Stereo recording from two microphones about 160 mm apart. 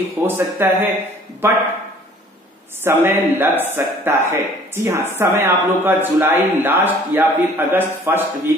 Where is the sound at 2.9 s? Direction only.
15° right (ahead or behind).